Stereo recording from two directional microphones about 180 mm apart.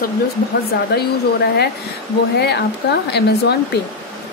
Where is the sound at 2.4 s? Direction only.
65° left (ahead or behind).